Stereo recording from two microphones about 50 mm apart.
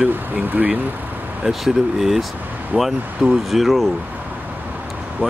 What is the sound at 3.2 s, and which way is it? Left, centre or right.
Speech, centre.